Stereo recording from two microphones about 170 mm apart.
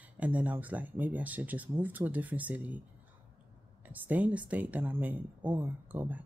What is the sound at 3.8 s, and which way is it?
Speech, 10° right (ahead or behind).